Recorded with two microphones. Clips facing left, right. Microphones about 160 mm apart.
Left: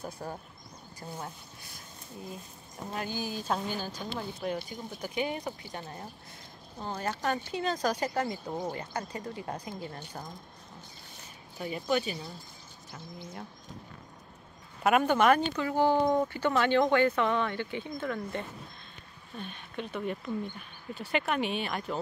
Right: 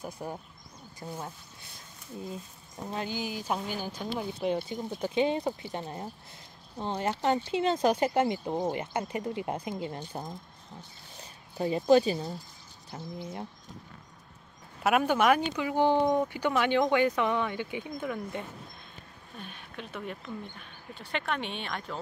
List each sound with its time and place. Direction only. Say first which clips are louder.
0.0 s speech: right 1 dB; 15° right (ahead or behind)
2.9 s speech: right 1 dB; 20° right (ahead or behind)
11.5 s speech: right 8 dB; 30° right (ahead or behind)
14.8 s speech: left 1 dB; 5° right (ahead or behind)